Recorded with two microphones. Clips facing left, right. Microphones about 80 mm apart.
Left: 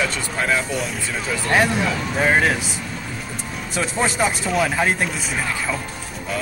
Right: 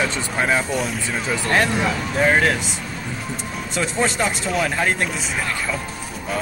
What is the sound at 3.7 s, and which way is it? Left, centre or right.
Speech, centre.